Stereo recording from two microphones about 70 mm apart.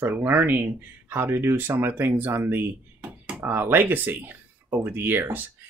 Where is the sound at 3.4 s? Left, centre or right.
Right.